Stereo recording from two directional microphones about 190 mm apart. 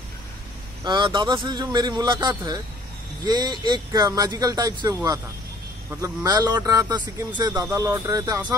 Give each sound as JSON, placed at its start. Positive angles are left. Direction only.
{"t": 0.8, "sound": "speech", "side_deg": -25}